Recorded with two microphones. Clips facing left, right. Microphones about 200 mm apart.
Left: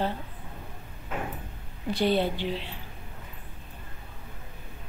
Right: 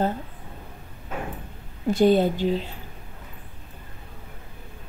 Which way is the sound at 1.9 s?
45° right (ahead or behind).